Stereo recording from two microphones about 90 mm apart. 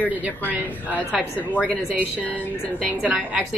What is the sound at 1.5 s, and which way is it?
Speech, 15° left (ahead or behind).